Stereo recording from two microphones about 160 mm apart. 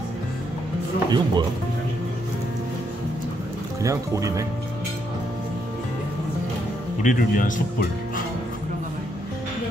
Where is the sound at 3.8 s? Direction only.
20° right (ahead or behind).